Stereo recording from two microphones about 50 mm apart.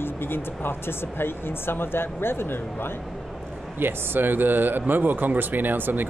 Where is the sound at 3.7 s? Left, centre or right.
Right.